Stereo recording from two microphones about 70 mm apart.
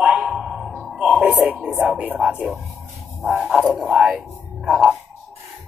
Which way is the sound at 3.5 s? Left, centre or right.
Centre.